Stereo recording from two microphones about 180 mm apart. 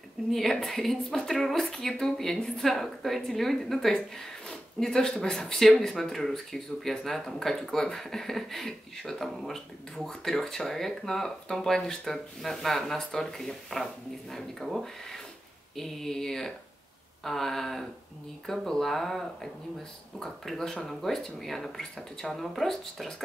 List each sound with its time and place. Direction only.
0.3 s speech: centre (ahead or behind)